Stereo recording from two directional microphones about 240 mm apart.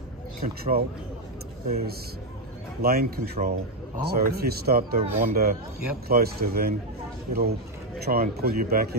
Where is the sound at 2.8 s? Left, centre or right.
Right.